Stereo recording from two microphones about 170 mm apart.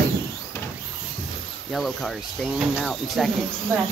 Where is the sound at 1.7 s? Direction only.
Centre (ahead or behind).